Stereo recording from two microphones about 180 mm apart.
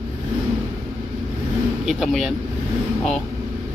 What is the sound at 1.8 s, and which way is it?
Speech, centre (ahead or behind).